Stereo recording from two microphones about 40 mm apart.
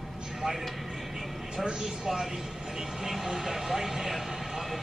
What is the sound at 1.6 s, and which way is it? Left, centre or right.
Speech, centre.